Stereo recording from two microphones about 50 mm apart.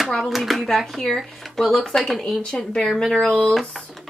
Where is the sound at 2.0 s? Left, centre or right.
Centre.